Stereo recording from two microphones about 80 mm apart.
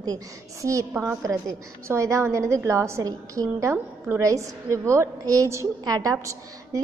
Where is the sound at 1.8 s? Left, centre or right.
Right.